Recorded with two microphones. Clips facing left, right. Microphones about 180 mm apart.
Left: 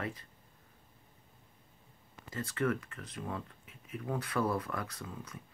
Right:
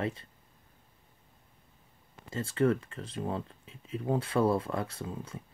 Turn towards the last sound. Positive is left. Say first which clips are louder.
# right 6 dB
turn(degrees=-30)  # may be behind; listen again after turning